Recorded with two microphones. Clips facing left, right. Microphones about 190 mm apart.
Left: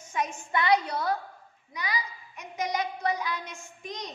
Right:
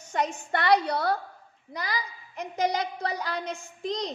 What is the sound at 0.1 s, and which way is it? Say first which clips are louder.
A woman's voice: right 2 dB; 70° right (ahead or behind).